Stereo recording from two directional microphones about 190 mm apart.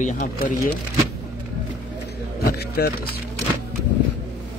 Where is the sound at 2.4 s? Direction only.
55° left (ahead or behind).